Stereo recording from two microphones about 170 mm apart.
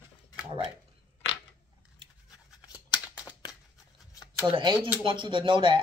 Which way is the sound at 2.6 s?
20° left (ahead or behind).